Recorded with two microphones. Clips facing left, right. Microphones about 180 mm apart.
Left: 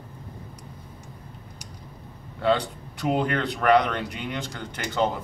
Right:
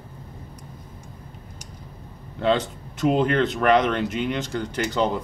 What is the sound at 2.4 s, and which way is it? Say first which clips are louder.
Speech: right 1 dB; 20° right (ahead or behind).